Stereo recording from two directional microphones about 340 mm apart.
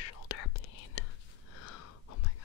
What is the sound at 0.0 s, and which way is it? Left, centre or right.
Whispering, left.